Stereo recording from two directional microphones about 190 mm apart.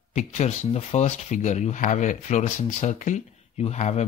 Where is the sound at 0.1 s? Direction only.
40° left (ahead or behind).